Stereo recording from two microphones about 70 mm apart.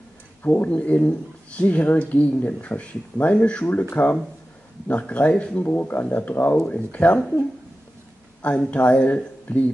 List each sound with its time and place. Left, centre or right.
0.4 s speech: left
8.4 s speech: centre